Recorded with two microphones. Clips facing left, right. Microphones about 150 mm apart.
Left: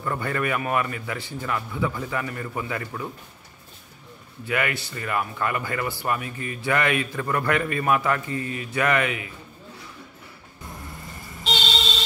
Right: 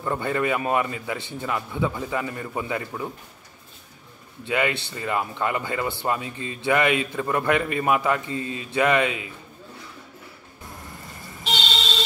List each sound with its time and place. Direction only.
0.0 s speech: 20° right (ahead or behind)
4.5 s speech: 20° right (ahead or behind)